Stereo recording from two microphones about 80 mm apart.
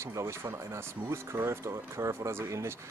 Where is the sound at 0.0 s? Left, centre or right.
Right.